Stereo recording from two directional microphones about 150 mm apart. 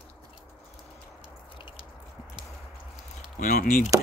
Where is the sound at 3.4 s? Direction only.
60° left (ahead or behind).